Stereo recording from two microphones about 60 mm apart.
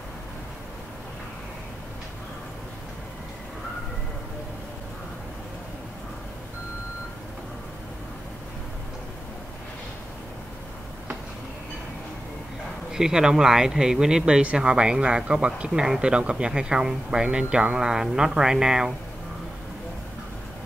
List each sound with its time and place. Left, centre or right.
12.9 s speech: centre